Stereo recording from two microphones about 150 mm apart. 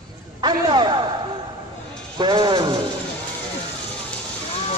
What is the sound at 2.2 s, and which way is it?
Music, 35° right (ahead or behind).